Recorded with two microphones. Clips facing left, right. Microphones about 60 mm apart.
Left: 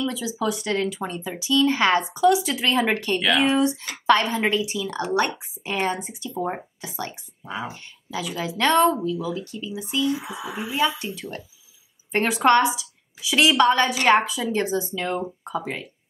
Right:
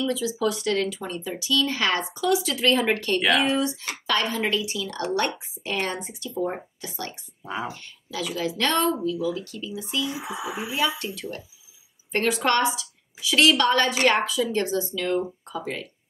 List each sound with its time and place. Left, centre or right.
0.1 s a woman's voice: centre
3.4 s a woman's voice: left
10.0 s speech: centre
11.0 s a woman's voice: left